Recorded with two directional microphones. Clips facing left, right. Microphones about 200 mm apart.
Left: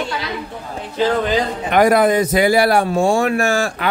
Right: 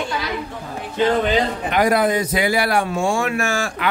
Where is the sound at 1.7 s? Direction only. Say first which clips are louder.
Left 5 dB; 50° left (ahead or behind).